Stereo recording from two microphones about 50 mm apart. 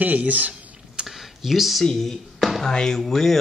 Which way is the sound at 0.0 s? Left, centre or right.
Right.